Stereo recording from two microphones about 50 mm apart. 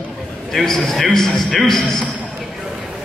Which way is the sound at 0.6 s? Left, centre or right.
Centre.